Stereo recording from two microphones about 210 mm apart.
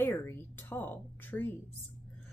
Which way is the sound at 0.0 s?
10° left (ahead or behind).